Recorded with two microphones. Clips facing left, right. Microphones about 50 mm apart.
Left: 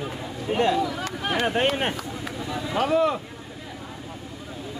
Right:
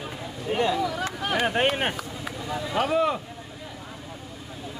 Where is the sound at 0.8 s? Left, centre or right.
Centre.